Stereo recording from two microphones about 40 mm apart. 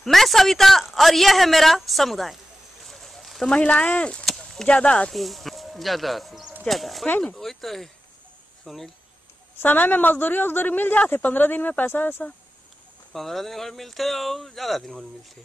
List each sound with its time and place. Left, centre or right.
0.0 s speech: centre
2.8 s a sound: centre
3.4 s speech: left
4.4 s a sound: centre
4.7 s speech: left
5.1 s speech: centre
9.6 s a woman's voice: left
13.1 s speech: centre